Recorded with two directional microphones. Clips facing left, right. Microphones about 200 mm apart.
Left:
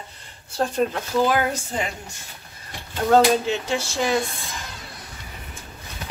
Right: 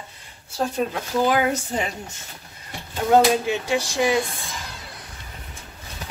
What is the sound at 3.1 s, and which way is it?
Speech, 10° right (ahead or behind).